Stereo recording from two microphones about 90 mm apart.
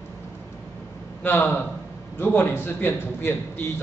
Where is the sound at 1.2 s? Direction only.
20° left (ahead or behind).